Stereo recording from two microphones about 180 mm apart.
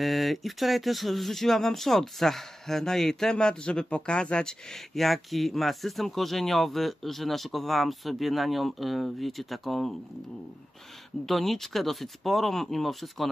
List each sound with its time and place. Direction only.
0.0 s speech: centre (ahead or behind)
11.2 s speech: centre (ahead or behind)